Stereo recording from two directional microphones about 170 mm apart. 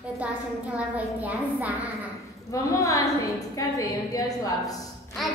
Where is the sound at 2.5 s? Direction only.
20° left (ahead or behind).